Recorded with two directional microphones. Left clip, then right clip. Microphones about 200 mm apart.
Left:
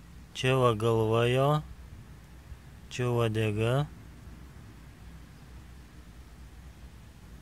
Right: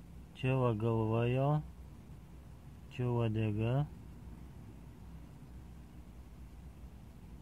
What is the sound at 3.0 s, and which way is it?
Speech, 35° left (ahead or behind).